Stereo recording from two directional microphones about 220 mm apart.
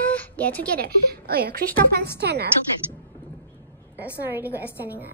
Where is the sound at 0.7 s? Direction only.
45° right (ahead or behind).